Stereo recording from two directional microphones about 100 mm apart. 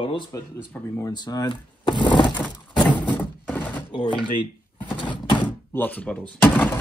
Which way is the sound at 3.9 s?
50° left (ahead or behind).